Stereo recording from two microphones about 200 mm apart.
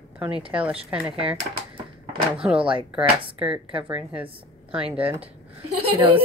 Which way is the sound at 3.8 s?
5° right (ahead or behind).